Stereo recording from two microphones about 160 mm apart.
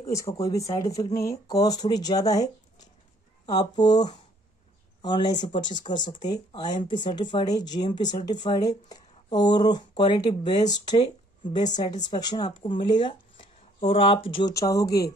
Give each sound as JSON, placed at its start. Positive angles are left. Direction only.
{"t": 0.1, "sound": "speech", "side_deg": 20}
{"t": 14.5, "sound": "speech", "side_deg": 20}